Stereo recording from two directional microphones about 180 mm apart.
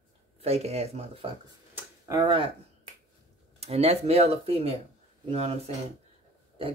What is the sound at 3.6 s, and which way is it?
Speech, 35° right (ahead or behind).